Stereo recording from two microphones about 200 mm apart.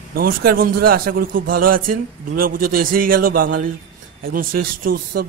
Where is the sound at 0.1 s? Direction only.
45° right (ahead or behind).